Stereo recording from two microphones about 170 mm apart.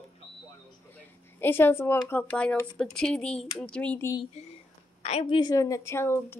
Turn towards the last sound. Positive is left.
turn(degrees=15)  # may be behind; listen again after turning